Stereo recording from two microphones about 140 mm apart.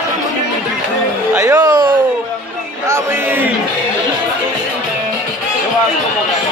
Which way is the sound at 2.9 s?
15° right (ahead or behind).